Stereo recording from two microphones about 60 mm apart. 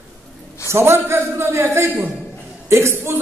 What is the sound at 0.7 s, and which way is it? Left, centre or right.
A man's voice, right.